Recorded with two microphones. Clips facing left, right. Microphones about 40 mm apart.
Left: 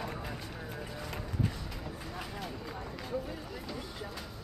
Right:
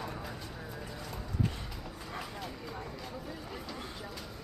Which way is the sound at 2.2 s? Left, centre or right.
Centre.